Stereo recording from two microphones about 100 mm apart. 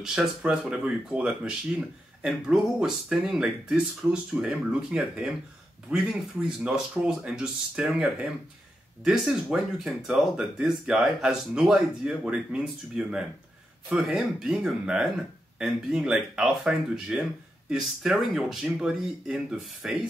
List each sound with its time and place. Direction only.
0.0 s speech: 5° right (ahead or behind)